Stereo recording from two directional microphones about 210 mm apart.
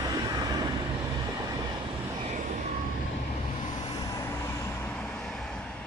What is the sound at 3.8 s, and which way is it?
Vehicle, 20° left (ahead or behind).